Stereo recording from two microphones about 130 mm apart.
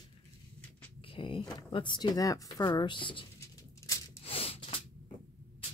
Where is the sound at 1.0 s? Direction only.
40° left (ahead or behind).